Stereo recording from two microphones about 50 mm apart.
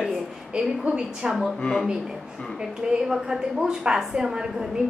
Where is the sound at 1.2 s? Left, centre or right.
Centre.